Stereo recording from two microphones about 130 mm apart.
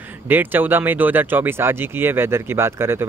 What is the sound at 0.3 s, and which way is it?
Speech, 15° right (ahead or behind).